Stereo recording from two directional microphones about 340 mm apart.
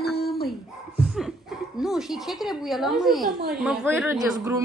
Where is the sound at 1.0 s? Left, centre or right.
Centre.